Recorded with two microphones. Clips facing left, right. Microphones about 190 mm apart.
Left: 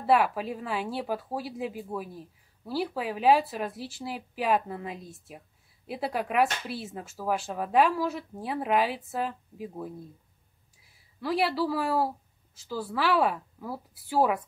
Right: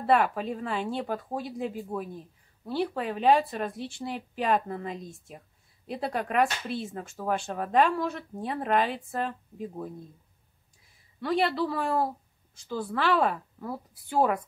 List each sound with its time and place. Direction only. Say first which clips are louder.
0.0 s a woman's voice: even; 5° left (ahead or behind)